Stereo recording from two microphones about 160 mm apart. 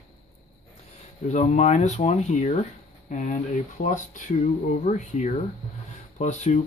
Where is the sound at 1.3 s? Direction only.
45° left (ahead or behind).